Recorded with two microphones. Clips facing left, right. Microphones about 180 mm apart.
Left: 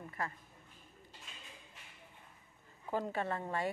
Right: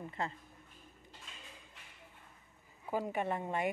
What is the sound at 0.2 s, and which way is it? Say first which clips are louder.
Speech: right 2 dB; 25° right (ahead or behind).